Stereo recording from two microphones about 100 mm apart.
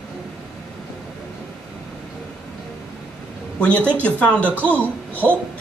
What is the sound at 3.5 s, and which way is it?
A woman's voice, 10° left (ahead or behind).